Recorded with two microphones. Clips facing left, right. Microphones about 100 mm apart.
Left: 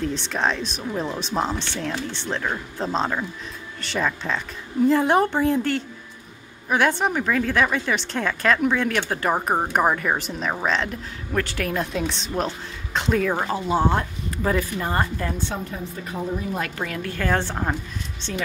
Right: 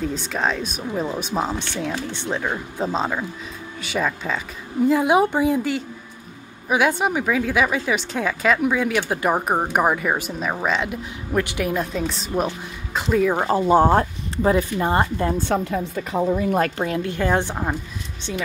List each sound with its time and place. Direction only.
0.0 s a woman's voice: 5° right (ahead or behind)
13.7 s speech: 45° right (ahead or behind)
14.3 s speech: 25° right (ahead or behind)
15.5 s a woman's voice: 90° right
16.7 s speech: 25° right (ahead or behind); by 18.4 s 5° right (ahead or behind)